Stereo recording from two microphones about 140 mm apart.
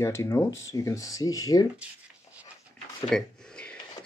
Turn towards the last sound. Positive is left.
turn(degrees=5)  # may be behind; listen again after turning